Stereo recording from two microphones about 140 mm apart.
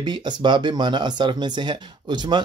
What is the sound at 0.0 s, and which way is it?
Speech, 35° right (ahead or behind).